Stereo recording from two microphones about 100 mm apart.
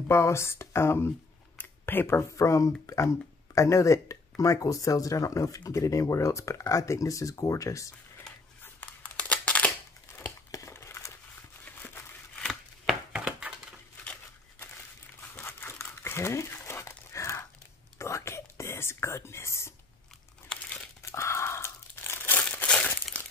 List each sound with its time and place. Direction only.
0.1 s speech: 25° left (ahead or behind)
8.8 s crumpling: 15° left (ahead or behind)
10.5 s a sound: 30° left (ahead or behind)
11.6 s crumpling: 15° left (ahead or behind)
12.4 s chopping: 5° right (ahead or behind)
14.0 s a sound: 15° left (ahead or behind)
15.3 s crumpling: 25° left (ahead or behind)
17.9 s whispering: 30° left (ahead or behind)
21.0 s crumpling: 25° left (ahead or behind)